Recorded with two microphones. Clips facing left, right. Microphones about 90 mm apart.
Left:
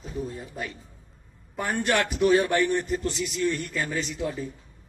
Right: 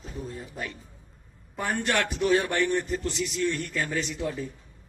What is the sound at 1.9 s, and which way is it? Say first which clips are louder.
A man's voice: left 3 dB; 10° left (ahead or behind).